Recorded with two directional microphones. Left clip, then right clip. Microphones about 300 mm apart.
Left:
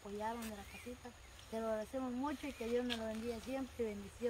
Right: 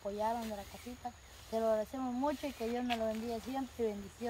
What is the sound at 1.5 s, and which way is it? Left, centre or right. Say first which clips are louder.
Speech: right 7 dB; right.